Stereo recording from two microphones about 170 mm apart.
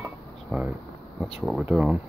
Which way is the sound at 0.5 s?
5° right (ahead or behind).